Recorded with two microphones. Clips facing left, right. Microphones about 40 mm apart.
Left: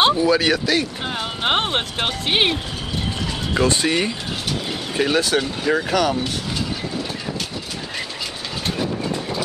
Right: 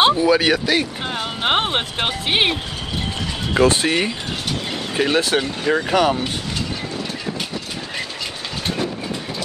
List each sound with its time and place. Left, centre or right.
0.0 s a sound: centre
0.3 s speech: centre
1.0 s speech: centre
5.1 s speech: right
5.4 s speech: centre
5.9 s speech: centre